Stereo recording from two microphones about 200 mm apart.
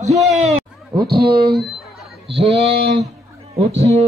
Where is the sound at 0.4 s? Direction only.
30° right (ahead or behind).